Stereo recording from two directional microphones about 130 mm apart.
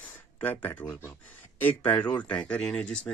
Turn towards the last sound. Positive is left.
turn(degrees=5)  # may be behind; listen again after turning